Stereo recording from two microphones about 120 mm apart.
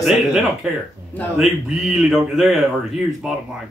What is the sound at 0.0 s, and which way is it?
Speech, 5° right (ahead or behind).